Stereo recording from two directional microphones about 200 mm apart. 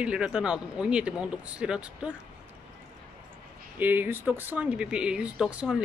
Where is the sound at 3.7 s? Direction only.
10° right (ahead or behind).